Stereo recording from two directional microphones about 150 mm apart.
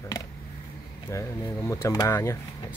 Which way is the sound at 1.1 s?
20° left (ahead or behind).